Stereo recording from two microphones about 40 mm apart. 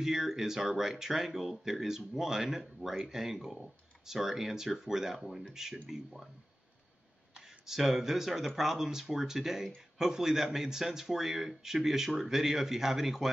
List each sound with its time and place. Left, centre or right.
0.0 s speech: centre
7.6 s speech: centre